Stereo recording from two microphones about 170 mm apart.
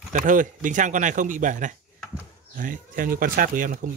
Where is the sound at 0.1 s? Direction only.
50° right (ahead or behind).